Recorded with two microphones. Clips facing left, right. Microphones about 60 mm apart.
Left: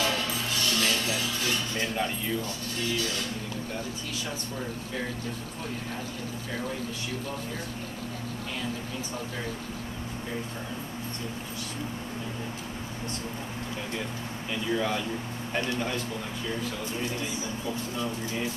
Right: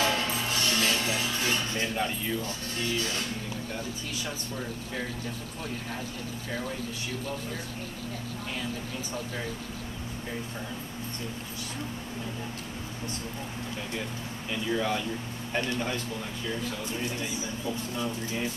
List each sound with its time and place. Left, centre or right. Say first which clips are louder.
0.0 s music: right 1 dB; right
14.5 s speech: even; centre